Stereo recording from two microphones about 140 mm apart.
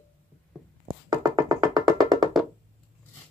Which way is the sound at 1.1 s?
30° right (ahead or behind).